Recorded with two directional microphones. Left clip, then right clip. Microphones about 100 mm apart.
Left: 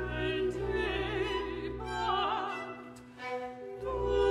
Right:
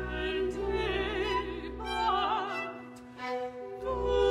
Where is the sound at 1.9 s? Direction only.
20° right (ahead or behind).